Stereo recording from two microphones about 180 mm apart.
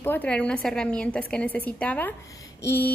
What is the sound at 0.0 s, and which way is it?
A woman's voice, 10° left (ahead or behind).